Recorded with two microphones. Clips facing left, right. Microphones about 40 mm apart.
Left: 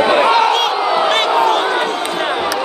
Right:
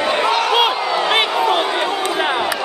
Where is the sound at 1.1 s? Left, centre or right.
Centre.